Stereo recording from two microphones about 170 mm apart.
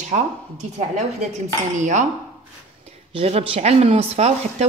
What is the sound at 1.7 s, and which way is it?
A woman's voice, 45° right (ahead or behind).